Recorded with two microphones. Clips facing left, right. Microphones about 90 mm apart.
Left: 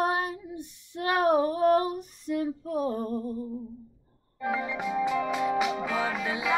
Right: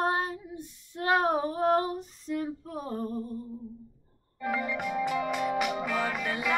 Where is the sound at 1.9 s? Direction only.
15° left (ahead or behind).